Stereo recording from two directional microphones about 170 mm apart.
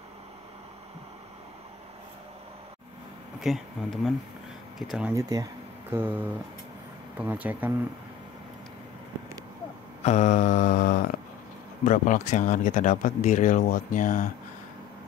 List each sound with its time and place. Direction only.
3.3 s speech: centre (ahead or behind)
5.1 s speech: 20° right (ahead or behind)
10.0 s a sound: 45° left (ahead or behind)
11.8 s speech: 45° left (ahead or behind)